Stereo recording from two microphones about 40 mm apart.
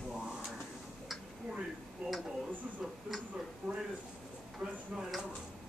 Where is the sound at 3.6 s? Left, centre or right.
Centre.